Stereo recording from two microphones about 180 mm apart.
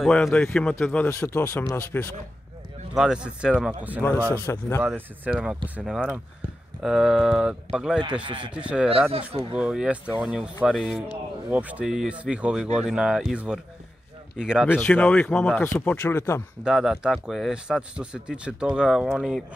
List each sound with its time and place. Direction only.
0.0 s speech: 5° left (ahead or behind)
2.9 s speech: 5° right (ahead or behind)
4.3 s speech: 15° left (ahead or behind)
4.8 s speech: 10° right (ahead or behind)
8.0 s a man's voice: 25° right (ahead or behind)
8.5 s speech: 5° right (ahead or behind)
14.7 s speech: 5° left (ahead or behind)
16.6 s speech: 5° right (ahead or behind)